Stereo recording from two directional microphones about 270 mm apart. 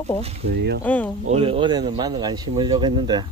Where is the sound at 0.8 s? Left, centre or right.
Centre.